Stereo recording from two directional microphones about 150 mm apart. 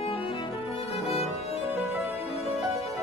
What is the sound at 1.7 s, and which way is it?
Music, 15° right (ahead or behind).